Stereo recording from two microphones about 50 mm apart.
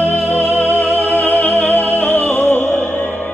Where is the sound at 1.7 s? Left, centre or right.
Left.